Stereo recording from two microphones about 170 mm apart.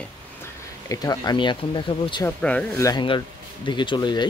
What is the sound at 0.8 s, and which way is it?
Speech, 20° left (ahead or behind).